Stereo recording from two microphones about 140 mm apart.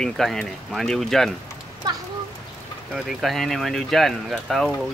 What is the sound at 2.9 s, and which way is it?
Speech, centre (ahead or behind).